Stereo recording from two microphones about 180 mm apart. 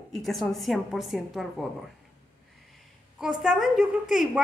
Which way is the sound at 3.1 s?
Centre (ahead or behind).